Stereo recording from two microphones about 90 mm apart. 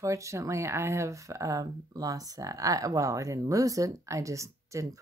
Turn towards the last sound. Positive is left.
turn(degrees=-35)  # may be behind; listen again after turning